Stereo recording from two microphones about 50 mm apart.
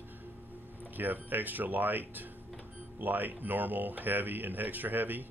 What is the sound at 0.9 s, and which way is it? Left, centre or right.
Speech, right.